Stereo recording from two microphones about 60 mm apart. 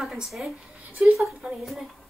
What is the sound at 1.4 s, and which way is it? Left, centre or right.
Speech, centre.